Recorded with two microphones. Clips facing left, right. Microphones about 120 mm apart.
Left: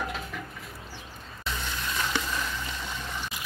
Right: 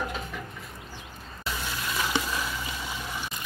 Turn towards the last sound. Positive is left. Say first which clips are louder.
# right 1 dB
turn(degrees=-10)  # may be behind; listen again after turning